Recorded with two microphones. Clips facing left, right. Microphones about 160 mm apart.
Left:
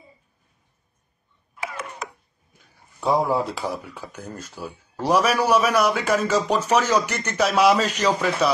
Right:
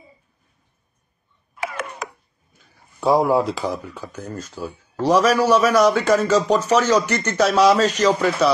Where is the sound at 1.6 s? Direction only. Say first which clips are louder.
Right 4 dB; 75° right (ahead or behind).